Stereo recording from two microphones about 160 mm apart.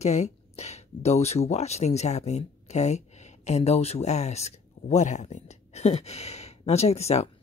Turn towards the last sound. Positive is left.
turn(degrees=40)  # may be behind; listen again after turning